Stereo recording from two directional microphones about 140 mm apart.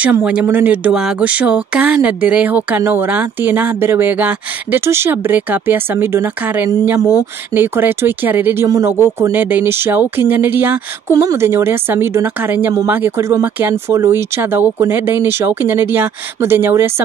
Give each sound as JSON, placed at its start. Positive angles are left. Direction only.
{"t": 0.0, "sound": "speech", "side_deg": -10}